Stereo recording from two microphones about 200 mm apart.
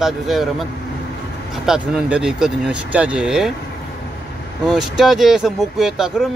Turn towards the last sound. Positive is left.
turn(degrees=0)  # may be behind; listen again after turning